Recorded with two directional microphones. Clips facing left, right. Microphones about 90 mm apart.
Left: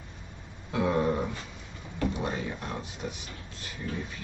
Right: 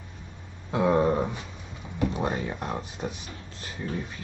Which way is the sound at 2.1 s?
45° right (ahead or behind).